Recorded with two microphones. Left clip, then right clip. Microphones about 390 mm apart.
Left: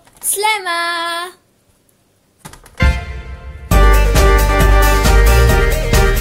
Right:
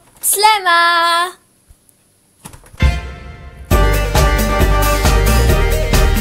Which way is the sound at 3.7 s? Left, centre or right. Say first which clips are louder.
Left 1 dB; centre.